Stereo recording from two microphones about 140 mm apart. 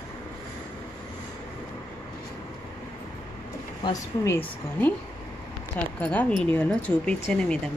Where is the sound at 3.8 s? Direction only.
25° left (ahead or behind).